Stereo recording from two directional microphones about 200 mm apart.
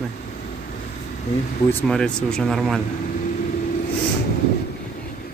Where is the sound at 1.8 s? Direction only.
5° left (ahead or behind).